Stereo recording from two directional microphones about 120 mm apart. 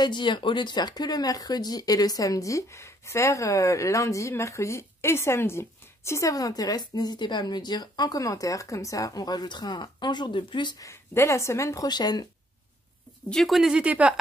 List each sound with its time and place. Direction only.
0.0 s speech: 40° left (ahead or behind)
10.9 s speech: 25° left (ahead or behind)
13.3 s speech: centre (ahead or behind)